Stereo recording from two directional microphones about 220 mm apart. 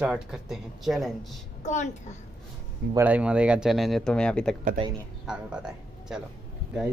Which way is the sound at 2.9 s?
5° right (ahead or behind).